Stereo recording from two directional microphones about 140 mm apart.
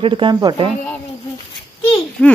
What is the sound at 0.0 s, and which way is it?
Speech, 35° right (ahead or behind).